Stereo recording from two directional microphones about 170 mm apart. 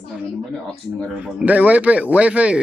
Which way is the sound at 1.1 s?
5° right (ahead or behind).